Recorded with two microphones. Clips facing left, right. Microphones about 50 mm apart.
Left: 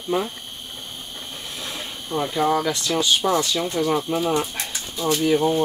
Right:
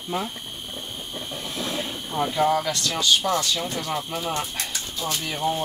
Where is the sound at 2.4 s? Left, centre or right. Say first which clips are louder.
Left 2 dB; centre.